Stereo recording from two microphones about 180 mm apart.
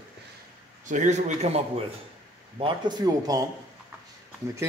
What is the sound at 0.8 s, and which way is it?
A man's voice, 45° right (ahead or behind).